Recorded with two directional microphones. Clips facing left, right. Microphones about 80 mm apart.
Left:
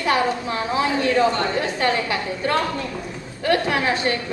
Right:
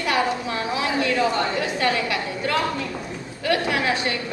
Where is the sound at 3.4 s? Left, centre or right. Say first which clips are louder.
Left 2 dB; left.